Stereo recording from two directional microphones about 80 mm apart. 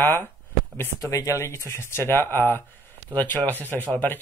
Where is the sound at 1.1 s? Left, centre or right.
Left.